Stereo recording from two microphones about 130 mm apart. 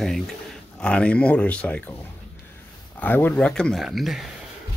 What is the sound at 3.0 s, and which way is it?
Speech, 15° left (ahead or behind).